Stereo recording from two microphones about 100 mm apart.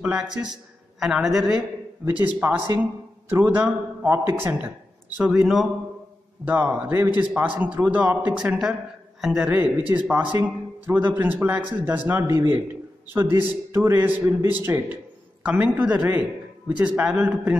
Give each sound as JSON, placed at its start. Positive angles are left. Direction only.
{"t": 0.0, "sound": "a man's voice", "side_deg": -10}
{"t": 2.0, "sound": "a man's voice", "side_deg": -20}
{"t": 5.3, "sound": "a man's voice", "side_deg": -5}
{"t": 6.4, "sound": "a man's voice", "side_deg": -15}
{"t": 9.2, "sound": "a man's voice", "side_deg": -5}
{"t": 9.5, "sound": "a man's voice", "side_deg": -20}